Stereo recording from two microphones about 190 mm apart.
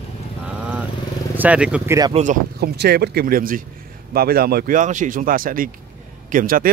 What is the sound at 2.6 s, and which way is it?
A man's voice, 60° right (ahead or behind).